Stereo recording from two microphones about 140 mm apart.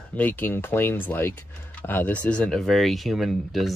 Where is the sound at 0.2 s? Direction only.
15° left (ahead or behind).